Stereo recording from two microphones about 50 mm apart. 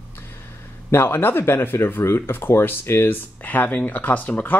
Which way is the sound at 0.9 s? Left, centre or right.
Left.